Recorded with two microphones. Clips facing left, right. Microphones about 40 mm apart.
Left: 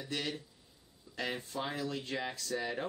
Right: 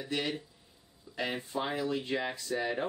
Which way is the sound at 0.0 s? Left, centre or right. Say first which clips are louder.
Right 4 dB; centre.